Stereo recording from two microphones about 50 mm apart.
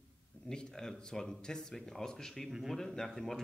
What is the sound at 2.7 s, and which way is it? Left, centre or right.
Speech, centre.